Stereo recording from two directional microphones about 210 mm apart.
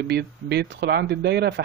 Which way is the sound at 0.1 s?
50° right (ahead or behind).